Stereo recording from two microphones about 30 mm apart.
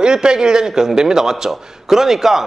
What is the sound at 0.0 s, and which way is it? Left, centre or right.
A man's voice, right.